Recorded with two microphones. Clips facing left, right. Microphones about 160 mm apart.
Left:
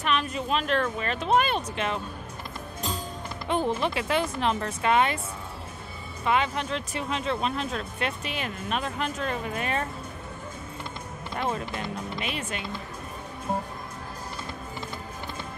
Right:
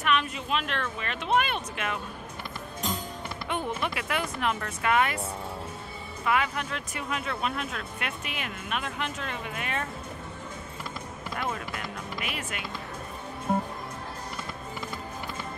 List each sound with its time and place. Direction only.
0.0 s speech: 35° left (ahead or behind)
3.4 s speech: 30° left (ahead or behind)
6.2 s speech: 25° left (ahead or behind)
11.3 s speech: 30° left (ahead or behind)